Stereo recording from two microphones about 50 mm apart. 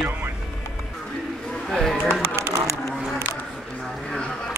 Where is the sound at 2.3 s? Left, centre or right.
Right.